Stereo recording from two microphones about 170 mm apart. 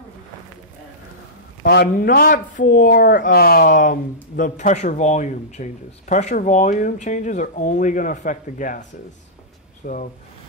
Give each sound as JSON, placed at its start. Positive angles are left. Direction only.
{"t": 1.6, "sound": "a man's voice", "side_deg": 70}
{"t": 2.0, "sound": "speech", "side_deg": 55}
{"t": 9.8, "sound": "speech", "side_deg": 55}